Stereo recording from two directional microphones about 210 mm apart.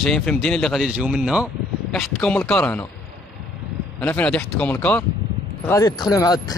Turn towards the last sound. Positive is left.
turn(degrees=20)  # may be behind; listen again after turning